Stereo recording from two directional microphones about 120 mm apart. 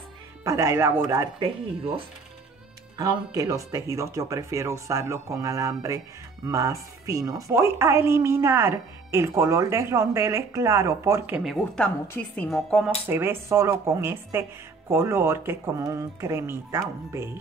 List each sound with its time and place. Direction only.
0.4 s speech: 25° right (ahead or behind)
3.0 s speech: 30° right (ahead or behind)
11.4 s a woman's voice: 5° left (ahead or behind)
13.1 s speech: 20° right (ahead or behind)